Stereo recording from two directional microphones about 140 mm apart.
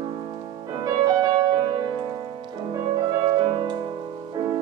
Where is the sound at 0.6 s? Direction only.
30° right (ahead or behind).